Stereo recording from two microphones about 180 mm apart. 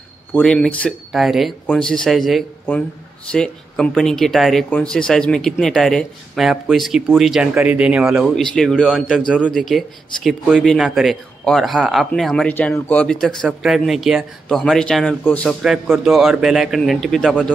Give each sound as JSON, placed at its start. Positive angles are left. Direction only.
{"t": 0.3, "sound": "speech", "side_deg": 5}